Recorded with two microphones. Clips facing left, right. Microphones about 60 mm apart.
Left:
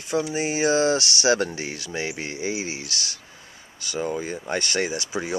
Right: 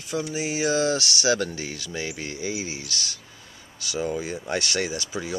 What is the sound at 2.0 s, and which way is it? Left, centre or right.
Speech, left.